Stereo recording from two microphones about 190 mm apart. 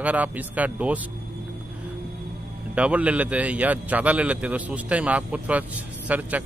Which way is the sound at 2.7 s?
5° right (ahead or behind).